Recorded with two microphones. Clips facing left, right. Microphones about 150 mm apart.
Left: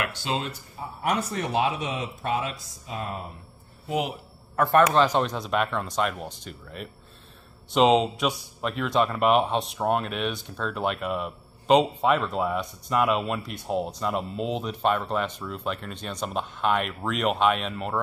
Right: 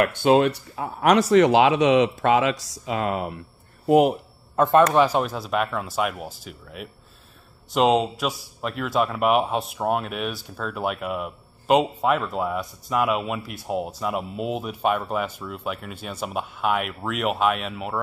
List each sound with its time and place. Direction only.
0.0 s speech: 50° right (ahead or behind); by 3.4 s 85° right
3.8 s speech: 50° right (ahead or behind)
4.6 s a man's voice: 20° right (ahead or behind)
4.9 s a man's voice: 10° right (ahead or behind)